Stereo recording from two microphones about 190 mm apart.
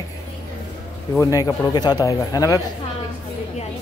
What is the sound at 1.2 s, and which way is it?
Speech, 15° left (ahead or behind).